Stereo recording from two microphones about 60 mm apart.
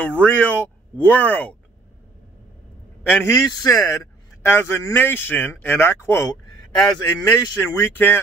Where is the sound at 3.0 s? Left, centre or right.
Left.